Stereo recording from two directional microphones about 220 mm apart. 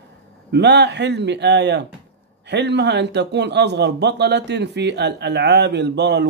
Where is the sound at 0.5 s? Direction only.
50° right (ahead or behind).